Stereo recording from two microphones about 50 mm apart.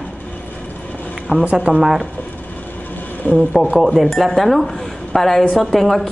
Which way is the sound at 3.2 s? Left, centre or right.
Left.